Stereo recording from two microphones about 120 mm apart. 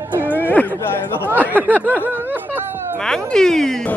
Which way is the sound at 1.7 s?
15° right (ahead or behind).